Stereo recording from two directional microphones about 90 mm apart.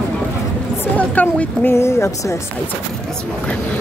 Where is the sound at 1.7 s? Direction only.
30° left (ahead or behind).